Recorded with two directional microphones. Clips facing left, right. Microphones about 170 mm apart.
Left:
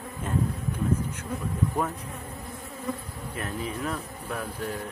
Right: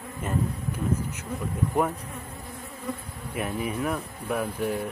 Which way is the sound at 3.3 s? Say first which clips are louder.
Right 4 dB; 10° right (ahead or behind).